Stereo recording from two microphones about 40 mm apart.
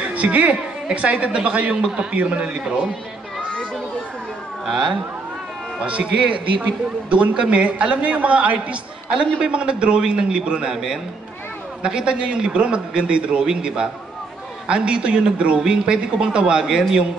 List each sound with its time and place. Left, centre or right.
0.0 s a woman's voice: right
4.6 s speech: centre
5.8 s a man's voice: right
11.8 s a man's voice: right